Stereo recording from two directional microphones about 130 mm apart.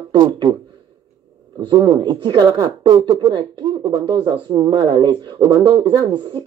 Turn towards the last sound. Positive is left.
turn(degrees=-40)  # may be behind; listen again after turning